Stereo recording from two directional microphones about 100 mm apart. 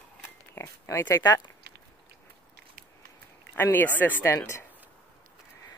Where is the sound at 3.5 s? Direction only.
20° left (ahead or behind).